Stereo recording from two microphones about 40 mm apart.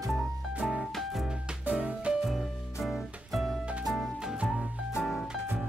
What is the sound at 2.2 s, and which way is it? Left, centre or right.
Music, centre.